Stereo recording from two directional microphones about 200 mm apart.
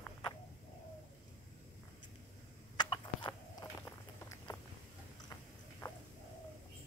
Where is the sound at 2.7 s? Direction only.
20° left (ahead or behind).